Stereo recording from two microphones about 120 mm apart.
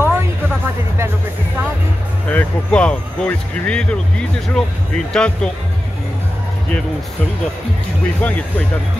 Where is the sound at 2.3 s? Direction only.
10° left (ahead or behind).